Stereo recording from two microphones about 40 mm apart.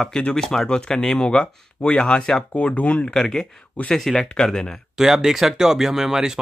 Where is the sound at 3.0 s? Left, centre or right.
Centre.